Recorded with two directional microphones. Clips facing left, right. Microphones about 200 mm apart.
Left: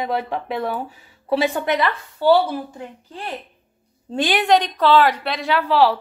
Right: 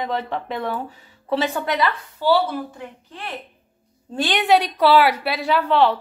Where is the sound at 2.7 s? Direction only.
30° left (ahead or behind).